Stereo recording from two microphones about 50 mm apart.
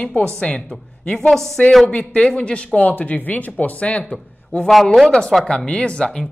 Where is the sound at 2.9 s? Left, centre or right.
Left.